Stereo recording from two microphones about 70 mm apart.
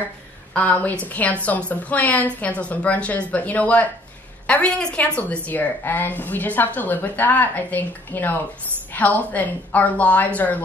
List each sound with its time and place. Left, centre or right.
0.6 s a woman's voice: left